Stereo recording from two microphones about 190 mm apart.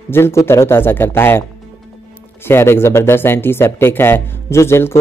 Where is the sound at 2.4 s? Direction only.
10° left (ahead or behind).